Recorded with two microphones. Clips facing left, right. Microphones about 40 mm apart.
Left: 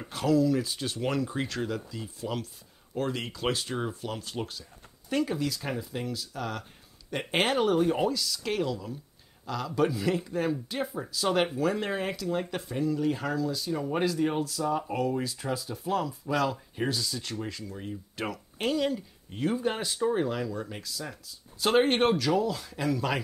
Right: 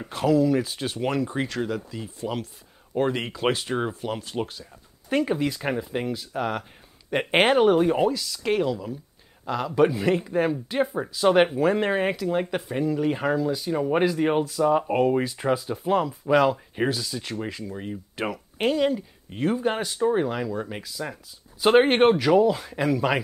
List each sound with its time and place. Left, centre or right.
0.0 s speech: centre
2.9 s speech: right
5.1 s speech: right
8.1 s speech: centre; by 16.9 s right
16.9 s speech: centre